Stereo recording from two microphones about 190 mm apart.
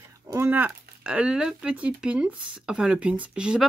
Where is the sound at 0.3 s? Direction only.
10° right (ahead or behind).